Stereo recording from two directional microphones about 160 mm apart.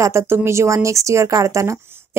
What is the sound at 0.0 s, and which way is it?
Speech, 15° right (ahead or behind).